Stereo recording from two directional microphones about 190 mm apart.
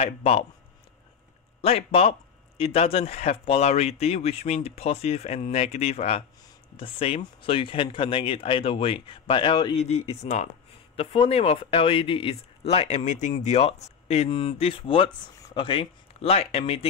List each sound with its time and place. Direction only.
0.0 s speech: 35° left (ahead or behind)
1.6 s speech: 30° left (ahead or behind)
9.8 s speech: 35° left (ahead or behind)